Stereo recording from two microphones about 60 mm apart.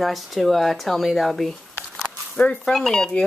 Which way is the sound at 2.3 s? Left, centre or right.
Left.